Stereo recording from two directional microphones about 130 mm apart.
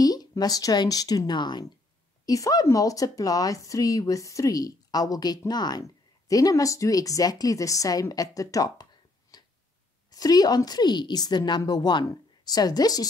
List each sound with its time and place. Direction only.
0.0 s speech: 30° left (ahead or behind)
9.3 s a sound: 30° left (ahead or behind)
10.1 s a woman's voice: 30° left (ahead or behind)